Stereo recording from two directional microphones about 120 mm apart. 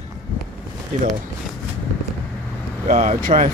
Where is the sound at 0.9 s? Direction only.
90° right.